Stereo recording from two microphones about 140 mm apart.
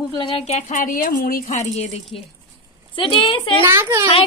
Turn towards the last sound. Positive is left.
turn(degrees=-20)  # may be behind; listen again after turning